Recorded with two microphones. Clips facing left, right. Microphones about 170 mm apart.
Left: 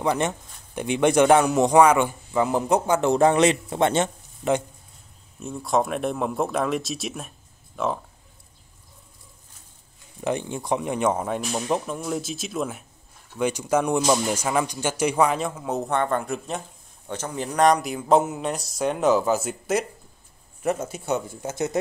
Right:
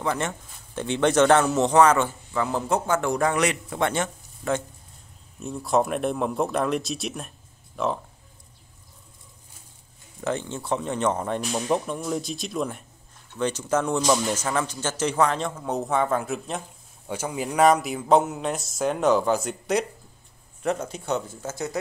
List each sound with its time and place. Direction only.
0.0 s speech: 15° left (ahead or behind)
5.4 s speech: centre (ahead or behind)
10.2 s speech: 15° left (ahead or behind)